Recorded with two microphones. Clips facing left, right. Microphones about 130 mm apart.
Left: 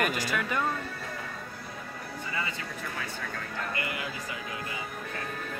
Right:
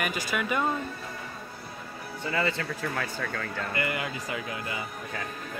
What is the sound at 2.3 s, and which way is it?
Speech, 75° right (ahead or behind).